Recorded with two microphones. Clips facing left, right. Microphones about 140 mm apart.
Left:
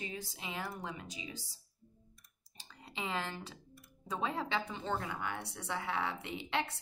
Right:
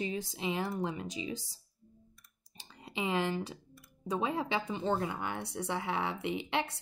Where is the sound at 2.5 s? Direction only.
15° right (ahead or behind).